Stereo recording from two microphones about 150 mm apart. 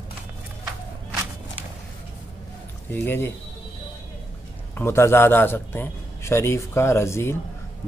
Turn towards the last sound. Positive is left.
turn(degrees=15)  # may be behind; listen again after turning